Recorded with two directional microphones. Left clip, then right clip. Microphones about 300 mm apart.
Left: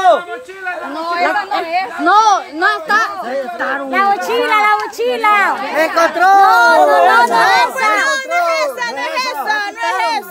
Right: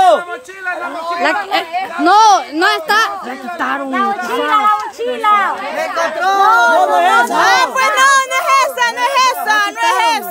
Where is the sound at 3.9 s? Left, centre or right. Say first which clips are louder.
Left 5 dB; left.